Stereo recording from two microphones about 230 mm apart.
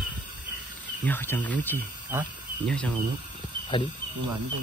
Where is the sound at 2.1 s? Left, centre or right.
Centre.